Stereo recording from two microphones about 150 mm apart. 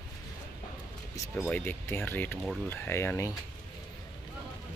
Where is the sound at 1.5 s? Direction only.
15° left (ahead or behind).